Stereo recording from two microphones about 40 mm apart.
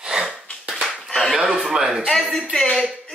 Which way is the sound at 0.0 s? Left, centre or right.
Centre.